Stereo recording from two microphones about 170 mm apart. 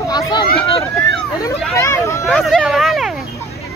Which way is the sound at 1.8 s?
15° left (ahead or behind).